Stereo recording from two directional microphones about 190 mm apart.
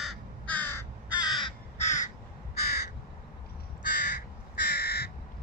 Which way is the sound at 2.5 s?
55° left (ahead or behind).